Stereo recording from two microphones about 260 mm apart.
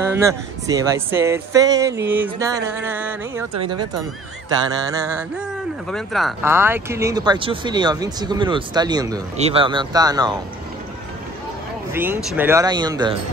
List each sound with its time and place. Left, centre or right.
0.1 s speech: centre
5.9 s speech: centre
11.9 s speech: centre